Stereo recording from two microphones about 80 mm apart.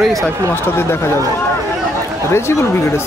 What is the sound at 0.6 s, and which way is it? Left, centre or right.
Speech, left.